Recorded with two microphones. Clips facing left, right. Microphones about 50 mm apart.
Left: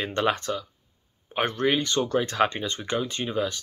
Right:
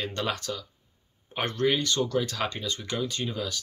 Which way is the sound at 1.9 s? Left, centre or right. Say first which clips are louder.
Left 4 dB; left.